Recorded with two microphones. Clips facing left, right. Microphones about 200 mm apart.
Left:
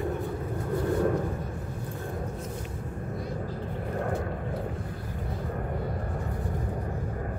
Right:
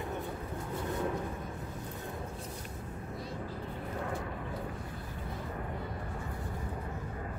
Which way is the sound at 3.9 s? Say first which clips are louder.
Left 7 dB; 50° left (ahead or behind).